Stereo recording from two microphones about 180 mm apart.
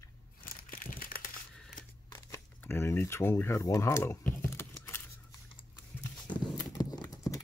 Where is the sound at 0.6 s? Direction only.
50° left (ahead or behind).